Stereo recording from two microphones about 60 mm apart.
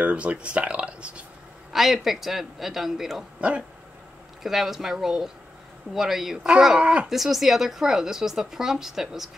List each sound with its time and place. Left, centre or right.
0.0 s speech: right
1.7 s a man's voice: centre
3.3 s speech: right
4.4 s a woman's voice: centre
7.1 s a woman's voice: centre